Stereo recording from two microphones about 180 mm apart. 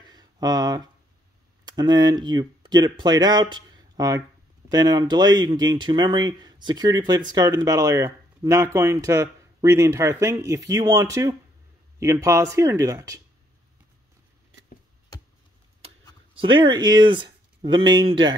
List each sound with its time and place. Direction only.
0.0 s a sound: 20° right (ahead or behind)
1.7 s speech: 25° right (ahead or behind)
16.3 s speech: 25° right (ahead or behind)